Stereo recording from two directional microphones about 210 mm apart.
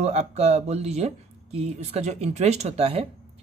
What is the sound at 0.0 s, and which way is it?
Speech, 30° right (ahead or behind).